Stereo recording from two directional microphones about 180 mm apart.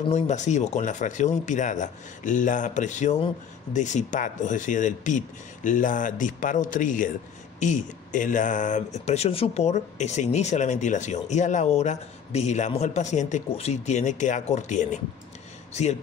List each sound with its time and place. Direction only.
0.1 s speech: 40° left (ahead or behind)